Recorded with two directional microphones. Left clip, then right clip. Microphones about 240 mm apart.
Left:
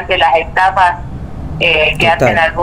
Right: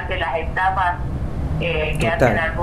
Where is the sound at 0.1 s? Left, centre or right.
Left.